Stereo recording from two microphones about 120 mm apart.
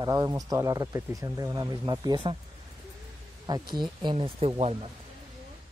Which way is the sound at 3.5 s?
35° right (ahead or behind).